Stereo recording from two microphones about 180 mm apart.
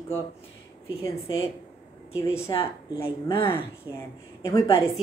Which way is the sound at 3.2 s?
15° left (ahead or behind).